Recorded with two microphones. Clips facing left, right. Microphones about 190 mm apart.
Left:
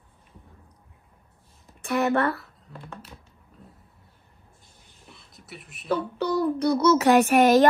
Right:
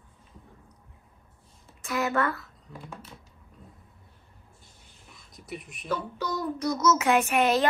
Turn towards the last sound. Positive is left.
turn(degrees=40)  # may be behind; listen again after turning